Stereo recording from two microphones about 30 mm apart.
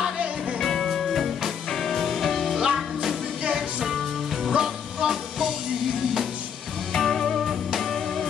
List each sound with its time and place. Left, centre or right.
0.6 s music: centre
2.7 s music: centre
4.5 s music: centre
6.9 s music: centre